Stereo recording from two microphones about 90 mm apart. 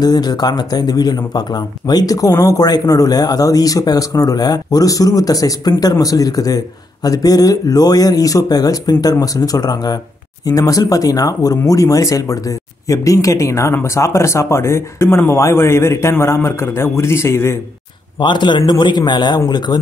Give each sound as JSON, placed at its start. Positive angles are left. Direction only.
{"t": 0.0, "sound": "speech", "side_deg": 50}
{"t": 18.2, "sound": "a man's voice", "side_deg": 60}